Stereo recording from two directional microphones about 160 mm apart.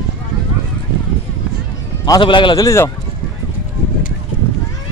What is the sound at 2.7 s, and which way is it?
Speech, 20° left (ahead or behind).